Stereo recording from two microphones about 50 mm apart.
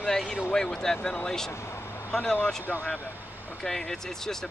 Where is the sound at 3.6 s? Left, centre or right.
Centre.